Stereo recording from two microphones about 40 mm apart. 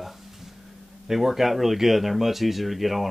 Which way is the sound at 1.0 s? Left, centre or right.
Centre.